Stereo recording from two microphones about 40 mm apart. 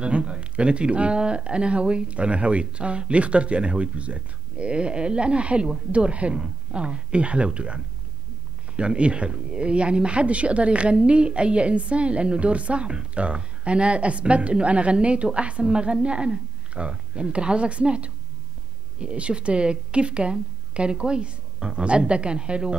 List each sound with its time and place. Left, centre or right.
0.0 s a woman's voice: right